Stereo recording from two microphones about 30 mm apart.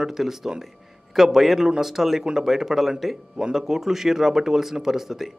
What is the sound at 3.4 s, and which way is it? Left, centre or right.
Speech, centre.